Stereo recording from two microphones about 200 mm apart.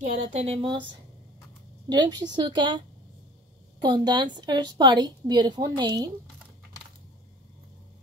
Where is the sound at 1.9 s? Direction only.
20° right (ahead or behind).